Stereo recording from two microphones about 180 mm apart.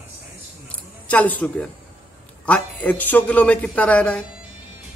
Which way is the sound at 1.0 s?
10° left (ahead or behind).